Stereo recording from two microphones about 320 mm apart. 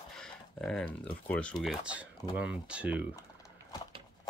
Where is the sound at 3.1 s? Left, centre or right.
Centre.